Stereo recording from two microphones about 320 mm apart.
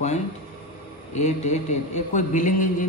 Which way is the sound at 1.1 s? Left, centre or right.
Left.